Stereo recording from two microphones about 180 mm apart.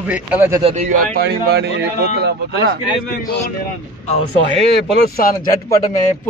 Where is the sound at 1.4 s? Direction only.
75° right (ahead or behind).